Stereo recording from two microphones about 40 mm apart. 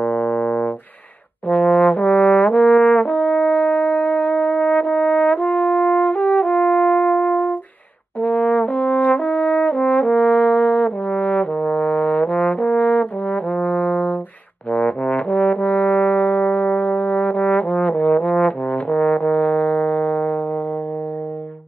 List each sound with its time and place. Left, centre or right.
0.1 s brass instrument: left
1.5 s trombone: left
8.2 s brass instrument: left
14.7 s trombone: left
16.2 s trombone: left